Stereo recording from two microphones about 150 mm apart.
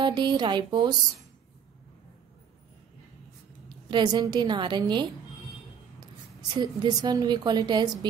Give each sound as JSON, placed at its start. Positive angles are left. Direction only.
{"t": 0.0, "sound": "speech", "side_deg": -30}
{"t": 3.6, "sound": "a woman's voice", "side_deg": -30}
{"t": 6.5, "sound": "a woman's voice", "side_deg": -25}